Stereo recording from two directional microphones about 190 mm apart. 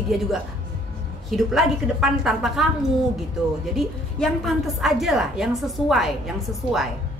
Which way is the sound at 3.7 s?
Centre (ahead or behind).